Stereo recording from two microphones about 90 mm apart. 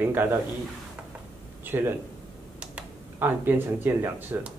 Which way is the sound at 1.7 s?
20° right (ahead or behind).